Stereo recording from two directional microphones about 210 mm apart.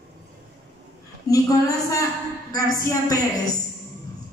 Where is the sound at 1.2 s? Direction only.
15° left (ahead or behind).